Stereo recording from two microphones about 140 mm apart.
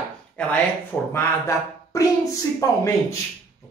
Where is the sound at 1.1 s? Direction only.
20° left (ahead or behind).